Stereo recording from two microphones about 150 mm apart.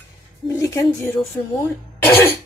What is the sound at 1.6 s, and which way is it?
Speech, 15° left (ahead or behind).